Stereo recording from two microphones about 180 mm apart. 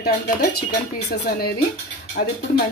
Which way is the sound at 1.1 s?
60° left (ahead or behind).